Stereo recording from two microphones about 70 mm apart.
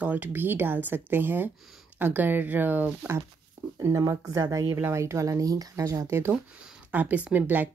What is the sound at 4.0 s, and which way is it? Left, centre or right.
Speech, right.